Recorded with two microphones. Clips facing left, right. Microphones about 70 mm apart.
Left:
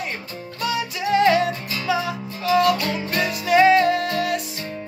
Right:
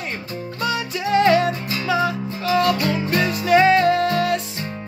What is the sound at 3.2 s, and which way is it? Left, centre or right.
Music, centre.